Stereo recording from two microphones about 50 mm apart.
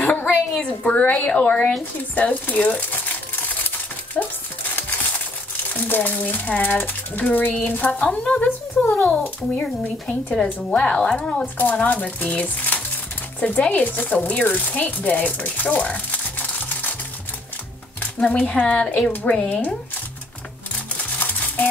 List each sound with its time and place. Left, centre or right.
0.0 s a sound: left
0.7 s a woman's voice: left
2.1 s crumpling: left
4.1 s a woman's voice: left
9.6 s a woman's voice: centre; by 16.9 s left
18.2 s a woman's voice: left